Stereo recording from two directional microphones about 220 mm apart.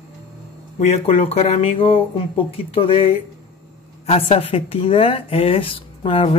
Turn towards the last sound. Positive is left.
turn(degrees=25)  # may be behind; listen again after turning